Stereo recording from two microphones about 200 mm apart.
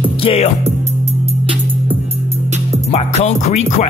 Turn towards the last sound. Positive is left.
turn(degrees=35)  # may be behind; listen again after turning